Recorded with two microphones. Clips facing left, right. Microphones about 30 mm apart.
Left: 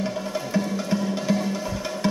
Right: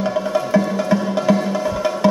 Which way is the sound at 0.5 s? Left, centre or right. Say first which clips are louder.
Right 6 dB; right.